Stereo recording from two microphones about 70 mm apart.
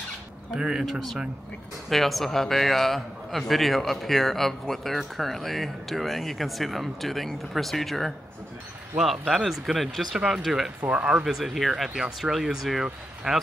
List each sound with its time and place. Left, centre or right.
0.5 s a man's voice: centre
9.3 s a man's voice: centre
10.9 s speech: centre
11.2 s a man's voice: centre